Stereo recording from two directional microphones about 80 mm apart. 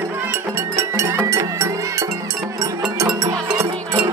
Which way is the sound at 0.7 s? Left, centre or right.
Right.